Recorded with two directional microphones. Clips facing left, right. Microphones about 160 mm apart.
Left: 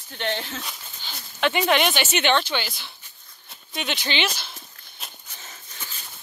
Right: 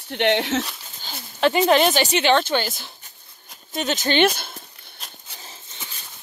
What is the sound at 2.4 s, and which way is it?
Speech, 45° right (ahead or behind).